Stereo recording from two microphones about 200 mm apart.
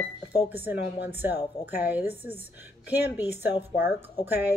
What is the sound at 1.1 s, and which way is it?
Speech, 10° right (ahead or behind).